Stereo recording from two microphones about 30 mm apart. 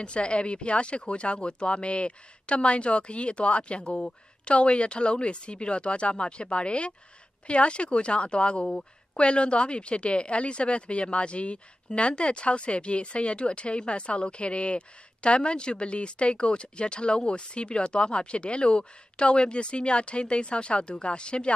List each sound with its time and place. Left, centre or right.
0.0 s speech: left